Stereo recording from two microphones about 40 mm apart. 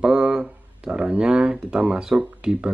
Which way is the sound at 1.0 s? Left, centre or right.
Right.